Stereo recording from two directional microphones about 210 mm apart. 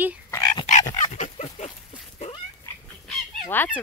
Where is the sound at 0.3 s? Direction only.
15° left (ahead or behind).